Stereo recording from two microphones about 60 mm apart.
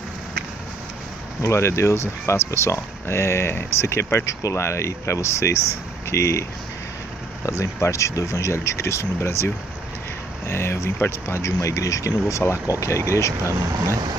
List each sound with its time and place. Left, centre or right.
1.4 s speech: left
7.4 s speech: left
13.4 s speech: right